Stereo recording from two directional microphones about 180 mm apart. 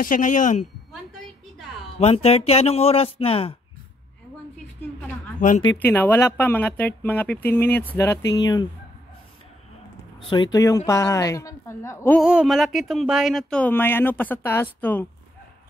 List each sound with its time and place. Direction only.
0.0 s a man's voice: 45° left (ahead or behind)
2.0 s speech: 35° left (ahead or behind)
5.4 s a man's voice: 45° left (ahead or behind)
5.8 s speech: 10° left (ahead or behind)
10.3 s speech: 20° left (ahead or behind)
12.2 s speech: 5° right (ahead or behind)